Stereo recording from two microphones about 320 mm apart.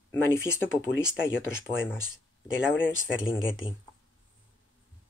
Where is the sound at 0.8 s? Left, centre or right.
Left.